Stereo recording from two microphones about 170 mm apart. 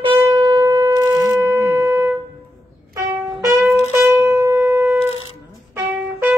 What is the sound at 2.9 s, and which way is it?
Music, 20° right (ahead or behind).